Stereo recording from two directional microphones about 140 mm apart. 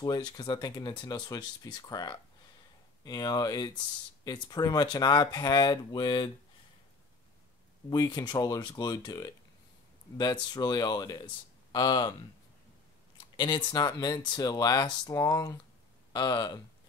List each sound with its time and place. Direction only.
0.0 s speech: 30° left (ahead or behind)
7.9 s speech: 30° left (ahead or behind)
10.5 s speech: 30° left (ahead or behind)
13.4 s speech: 35° left (ahead or behind)